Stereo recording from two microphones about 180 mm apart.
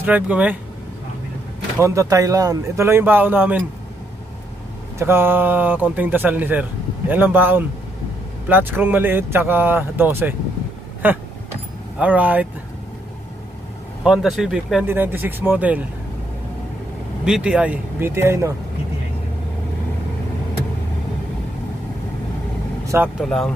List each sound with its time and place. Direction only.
0.0 s speech: 10° right (ahead or behind)
1.8 s speech: 15° right (ahead or behind)
4.9 s speech: 15° right (ahead or behind)
14.0 s speech: 5° right (ahead or behind)
17.2 s speech: 5° right (ahead or behind)
23.2 s speech: centre (ahead or behind)